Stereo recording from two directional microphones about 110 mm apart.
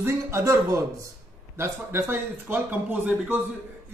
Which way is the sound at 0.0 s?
25° right (ahead or behind).